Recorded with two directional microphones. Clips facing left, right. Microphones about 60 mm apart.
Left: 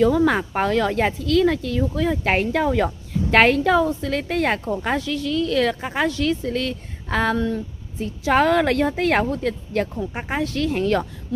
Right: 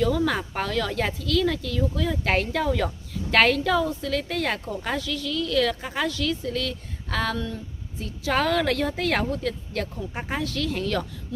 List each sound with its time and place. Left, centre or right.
0.0 s a woman's voice: left